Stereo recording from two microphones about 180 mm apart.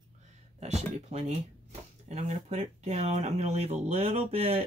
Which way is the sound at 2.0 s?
40° right (ahead or behind).